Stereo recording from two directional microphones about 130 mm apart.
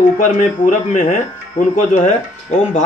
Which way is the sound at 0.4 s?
75° left (ahead or behind).